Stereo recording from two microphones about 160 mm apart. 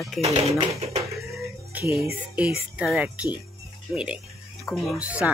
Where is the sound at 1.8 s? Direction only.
15° right (ahead or behind).